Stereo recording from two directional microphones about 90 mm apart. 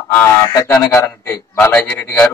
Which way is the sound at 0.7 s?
20° left (ahead or behind).